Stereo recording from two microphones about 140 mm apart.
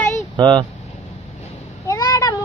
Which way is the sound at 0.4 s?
35° right (ahead or behind).